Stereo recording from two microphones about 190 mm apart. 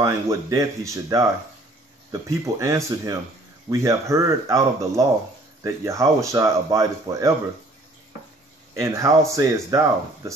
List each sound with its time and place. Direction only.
0.0 s speech: 15° right (ahead or behind)
8.7 s speech: 15° right (ahead or behind)